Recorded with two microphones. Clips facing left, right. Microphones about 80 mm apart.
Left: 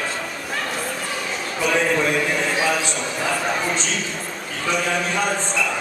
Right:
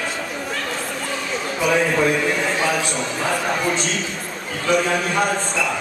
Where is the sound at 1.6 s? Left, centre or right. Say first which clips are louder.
Right 2 dB; centre.